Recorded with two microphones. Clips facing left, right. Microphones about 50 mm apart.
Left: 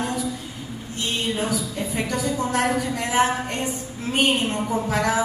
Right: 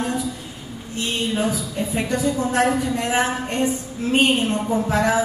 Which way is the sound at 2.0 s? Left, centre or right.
Right.